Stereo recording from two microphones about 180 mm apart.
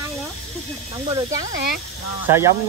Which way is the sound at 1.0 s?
20° right (ahead or behind).